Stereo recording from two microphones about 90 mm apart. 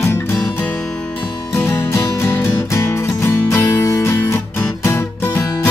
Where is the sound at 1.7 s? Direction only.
30° left (ahead or behind).